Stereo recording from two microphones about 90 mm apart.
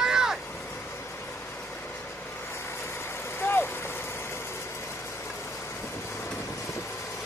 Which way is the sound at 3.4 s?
25° left (ahead or behind).